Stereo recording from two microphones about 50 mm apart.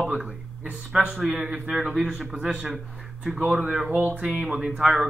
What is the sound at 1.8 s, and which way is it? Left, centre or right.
A man's voice, centre.